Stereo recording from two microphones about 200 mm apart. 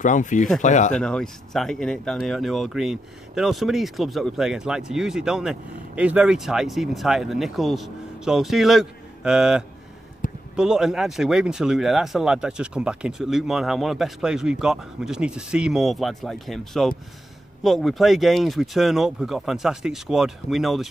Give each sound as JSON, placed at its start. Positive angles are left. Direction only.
{"t": 0.0, "sound": "speech", "side_deg": 40}
{"t": 0.9, "sound": "speech", "side_deg": 5}